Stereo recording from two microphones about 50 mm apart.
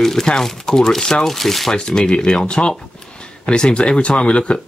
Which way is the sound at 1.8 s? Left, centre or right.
Centre.